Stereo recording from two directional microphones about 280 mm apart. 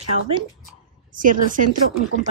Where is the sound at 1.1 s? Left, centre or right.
Right.